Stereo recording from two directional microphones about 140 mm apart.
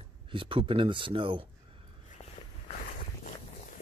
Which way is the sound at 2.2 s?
55° left (ahead or behind).